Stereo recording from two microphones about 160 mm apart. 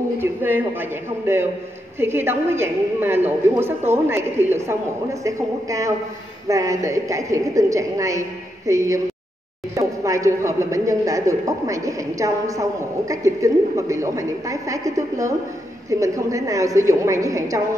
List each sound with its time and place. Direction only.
0.2 s a woman's voice: 10° right (ahead or behind)